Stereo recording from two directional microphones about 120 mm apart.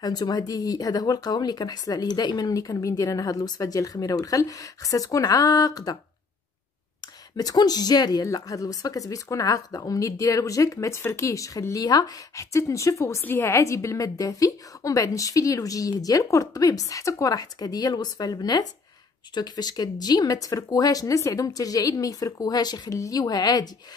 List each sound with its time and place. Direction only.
0.0 s a woman's voice: 35° left (ahead or behind)
7.3 s a woman's voice: 35° left (ahead or behind)